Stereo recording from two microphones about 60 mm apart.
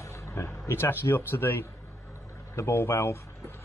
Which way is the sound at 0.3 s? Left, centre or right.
Left.